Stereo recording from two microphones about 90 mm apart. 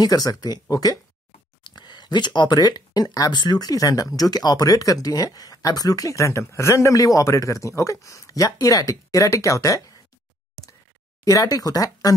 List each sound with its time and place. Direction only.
0.0 s speech: 45° left (ahead or behind)
11.2 s speech: 40° left (ahead or behind)